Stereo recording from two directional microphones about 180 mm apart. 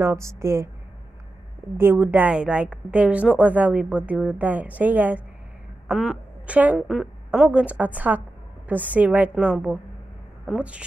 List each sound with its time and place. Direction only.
0.0 s a woman's voice: 15° right (ahead or behind)
1.8 s a woman's voice: 10° right (ahead or behind)